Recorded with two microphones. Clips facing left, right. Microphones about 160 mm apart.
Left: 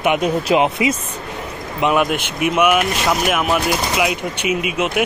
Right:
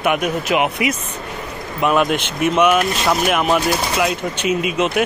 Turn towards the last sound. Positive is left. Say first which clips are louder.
# right 1 dB
turn(degrees=10)  # may be behind; listen again after turning